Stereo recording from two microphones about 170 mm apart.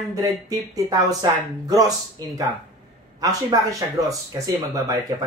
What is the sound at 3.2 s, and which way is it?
Speech, 20° right (ahead or behind).